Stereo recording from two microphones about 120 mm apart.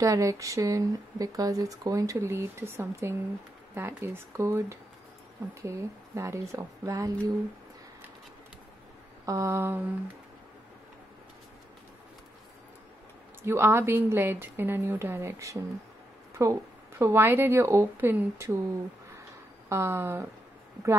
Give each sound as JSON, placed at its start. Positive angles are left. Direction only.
{"t": 0.0, "sound": "speech", "side_deg": -25}
{"t": 9.2, "sound": "speech", "side_deg": -25}
{"t": 13.4, "sound": "speech", "side_deg": -20}
{"t": 19.7, "sound": "speech", "side_deg": -20}